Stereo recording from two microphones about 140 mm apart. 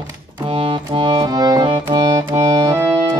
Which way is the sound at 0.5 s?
40° right (ahead or behind).